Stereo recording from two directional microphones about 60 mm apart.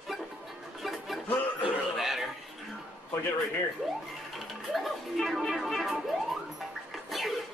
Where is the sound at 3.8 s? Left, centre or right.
Centre.